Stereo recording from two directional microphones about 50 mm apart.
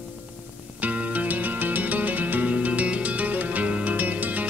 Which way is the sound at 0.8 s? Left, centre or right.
Right.